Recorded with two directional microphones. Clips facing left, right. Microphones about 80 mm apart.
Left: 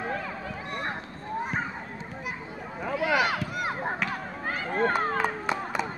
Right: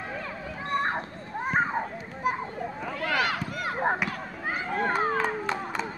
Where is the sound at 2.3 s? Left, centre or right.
Right.